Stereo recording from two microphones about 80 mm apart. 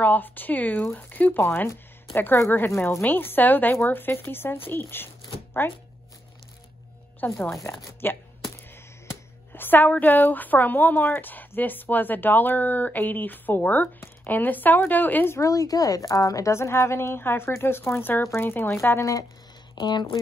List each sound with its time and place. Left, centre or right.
0.0 s a woman's voice: left
7.2 s a woman's voice: left
9.5 s a woman's voice: left
15.3 s a woman's voice: left
19.7 s speech: left